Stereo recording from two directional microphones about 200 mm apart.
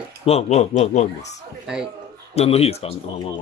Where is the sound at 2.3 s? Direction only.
30° left (ahead or behind).